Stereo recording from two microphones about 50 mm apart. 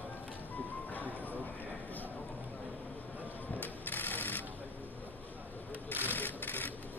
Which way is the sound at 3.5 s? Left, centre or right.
Left.